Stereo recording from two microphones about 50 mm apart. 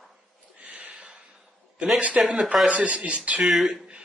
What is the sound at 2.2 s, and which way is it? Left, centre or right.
Speech, centre.